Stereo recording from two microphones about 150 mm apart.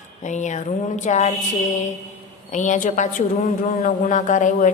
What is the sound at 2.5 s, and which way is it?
A woman's voice, 55° left (ahead or behind).